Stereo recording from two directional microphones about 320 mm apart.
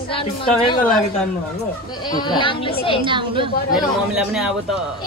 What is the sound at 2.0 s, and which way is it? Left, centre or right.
Speech, centre.